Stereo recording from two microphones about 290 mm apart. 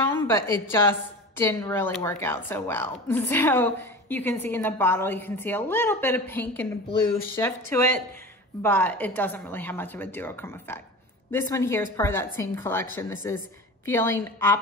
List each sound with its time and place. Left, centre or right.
0.1 s a woman's voice: centre